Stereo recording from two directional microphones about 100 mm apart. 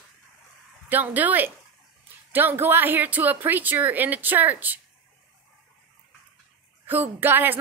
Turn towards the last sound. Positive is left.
turn(degrees=-20)  # may be behind; listen again after turning